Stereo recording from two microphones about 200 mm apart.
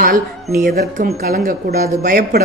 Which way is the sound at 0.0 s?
45° right (ahead or behind).